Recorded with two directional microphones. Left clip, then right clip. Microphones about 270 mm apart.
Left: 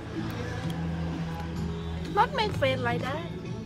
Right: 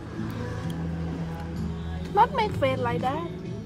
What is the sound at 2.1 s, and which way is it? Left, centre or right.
Music, right.